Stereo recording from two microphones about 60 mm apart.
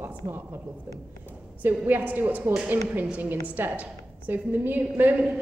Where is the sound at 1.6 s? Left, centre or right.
Right.